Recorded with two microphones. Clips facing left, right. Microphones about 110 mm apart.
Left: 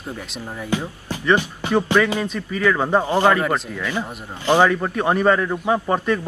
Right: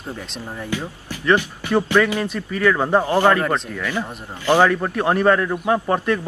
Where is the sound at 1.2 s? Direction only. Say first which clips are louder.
Right 1 dB; 15° left (ahead or behind).